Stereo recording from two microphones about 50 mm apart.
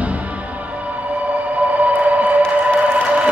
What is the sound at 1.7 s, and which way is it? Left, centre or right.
Music, right.